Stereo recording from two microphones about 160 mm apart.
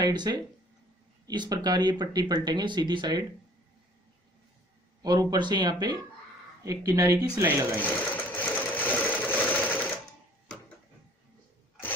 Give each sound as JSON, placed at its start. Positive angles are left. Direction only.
{"t": 0.0, "sound": "speech", "side_deg": -25}
{"t": 5.0, "sound": "speech", "side_deg": -25}
{"t": 7.8, "sound": "sewing machine", "side_deg": 10}